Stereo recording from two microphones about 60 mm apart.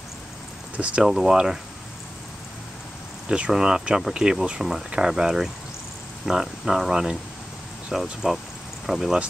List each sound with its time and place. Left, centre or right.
0.7 s speech: centre
1.0 s speech: centre
3.3 s speech: centre